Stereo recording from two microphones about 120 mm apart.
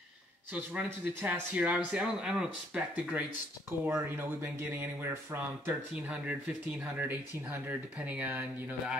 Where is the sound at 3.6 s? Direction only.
20° right (ahead or behind).